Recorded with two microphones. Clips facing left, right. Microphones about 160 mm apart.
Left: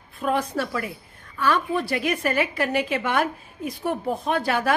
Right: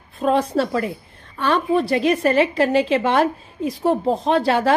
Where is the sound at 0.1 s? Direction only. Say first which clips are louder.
Right 6 dB; 25° right (ahead or behind).